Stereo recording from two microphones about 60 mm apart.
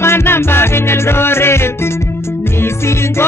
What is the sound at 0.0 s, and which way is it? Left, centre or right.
Music, left.